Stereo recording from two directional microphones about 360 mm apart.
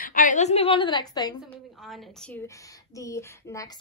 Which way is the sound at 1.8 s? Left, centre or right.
Centre.